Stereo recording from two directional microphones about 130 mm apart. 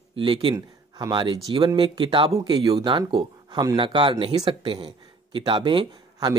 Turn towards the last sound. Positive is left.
turn(degrees=-35)  # may be behind; listen again after turning